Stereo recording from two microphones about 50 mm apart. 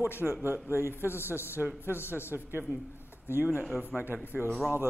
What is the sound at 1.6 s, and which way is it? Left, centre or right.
Speech, right.